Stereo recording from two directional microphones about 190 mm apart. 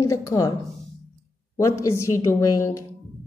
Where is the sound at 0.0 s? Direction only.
15° left (ahead or behind).